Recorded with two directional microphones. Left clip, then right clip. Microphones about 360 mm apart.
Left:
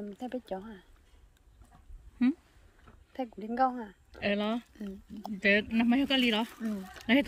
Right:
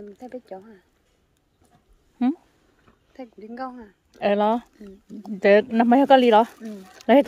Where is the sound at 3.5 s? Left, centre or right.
Left.